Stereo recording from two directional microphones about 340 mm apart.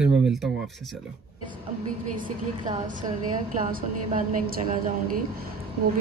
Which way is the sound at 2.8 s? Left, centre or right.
Right.